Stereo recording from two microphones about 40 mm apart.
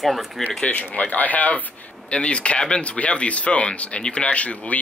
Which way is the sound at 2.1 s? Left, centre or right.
Left.